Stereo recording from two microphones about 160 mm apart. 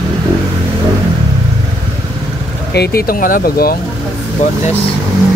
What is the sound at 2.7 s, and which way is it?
Speech, 80° left.